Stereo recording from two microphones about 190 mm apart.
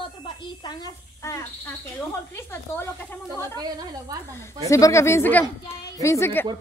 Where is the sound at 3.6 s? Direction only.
20° right (ahead or behind).